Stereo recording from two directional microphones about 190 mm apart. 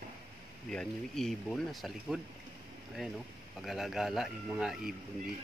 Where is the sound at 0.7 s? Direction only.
5° left (ahead or behind).